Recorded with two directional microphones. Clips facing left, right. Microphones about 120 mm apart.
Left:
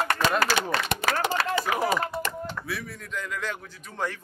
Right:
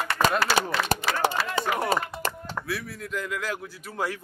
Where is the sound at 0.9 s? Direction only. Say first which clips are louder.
Right 2 dB; 35° right (ahead or behind).